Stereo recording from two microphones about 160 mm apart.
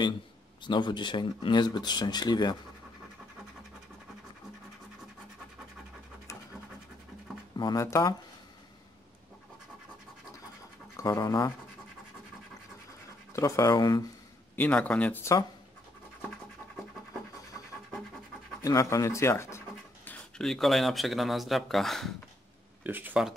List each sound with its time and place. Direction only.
0.7 s speech: 30° left (ahead or behind)
7.5 s speech: 25° left (ahead or behind)
11.0 s speech: 20° left (ahead or behind)
13.3 s speech: 20° left (ahead or behind)
14.5 s speech: 10° left (ahead or behind)
18.6 s speech: 20° left (ahead or behind)
20.1 s speech: 5° left (ahead or behind)
22.8 s speech: 10° right (ahead or behind)